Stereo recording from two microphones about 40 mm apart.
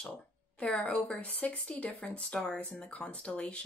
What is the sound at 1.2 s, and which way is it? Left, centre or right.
Speech, left.